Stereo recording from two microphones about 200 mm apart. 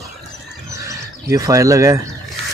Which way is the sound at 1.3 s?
15° right (ahead or behind).